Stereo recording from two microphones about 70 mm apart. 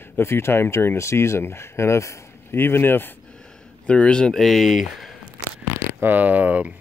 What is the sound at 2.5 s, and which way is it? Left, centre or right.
Speech, left.